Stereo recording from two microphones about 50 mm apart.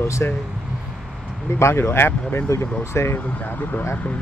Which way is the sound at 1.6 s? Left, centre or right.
Left.